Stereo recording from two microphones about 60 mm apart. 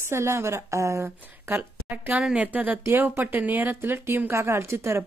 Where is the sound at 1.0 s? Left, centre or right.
Right.